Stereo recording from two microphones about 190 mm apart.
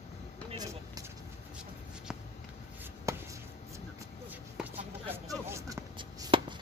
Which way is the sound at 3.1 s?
15° right (ahead or behind).